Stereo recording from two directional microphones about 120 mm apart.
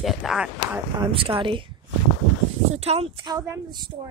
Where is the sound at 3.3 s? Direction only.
35° right (ahead or behind).